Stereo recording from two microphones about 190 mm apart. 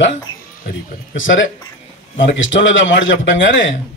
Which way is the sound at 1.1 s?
90° left.